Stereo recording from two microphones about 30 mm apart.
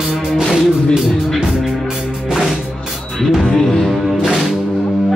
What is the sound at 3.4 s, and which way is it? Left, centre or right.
Music, centre.